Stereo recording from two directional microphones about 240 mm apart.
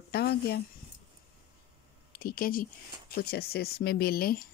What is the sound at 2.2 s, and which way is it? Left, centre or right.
Speech, left.